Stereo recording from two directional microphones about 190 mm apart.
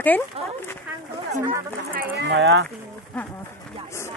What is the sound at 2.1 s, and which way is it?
Speech, 70° right (ahead or behind).